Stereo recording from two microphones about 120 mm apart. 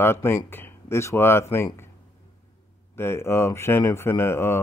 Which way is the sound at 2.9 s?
20° left (ahead or behind).